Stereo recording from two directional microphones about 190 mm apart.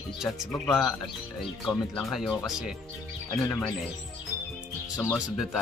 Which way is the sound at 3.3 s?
15° left (ahead or behind).